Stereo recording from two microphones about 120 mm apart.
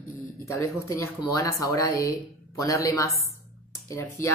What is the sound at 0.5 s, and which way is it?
Speech, 25° left (ahead or behind).